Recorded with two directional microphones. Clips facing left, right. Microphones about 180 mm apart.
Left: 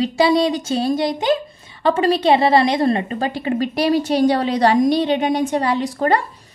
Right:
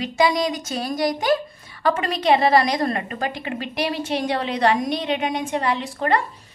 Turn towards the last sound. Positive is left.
turn(degrees=35)  # may be behind; listen again after turning